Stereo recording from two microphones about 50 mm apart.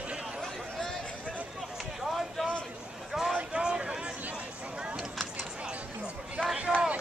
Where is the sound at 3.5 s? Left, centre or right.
Centre.